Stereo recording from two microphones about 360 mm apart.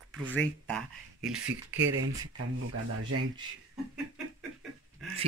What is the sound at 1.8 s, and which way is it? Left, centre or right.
Speech, right.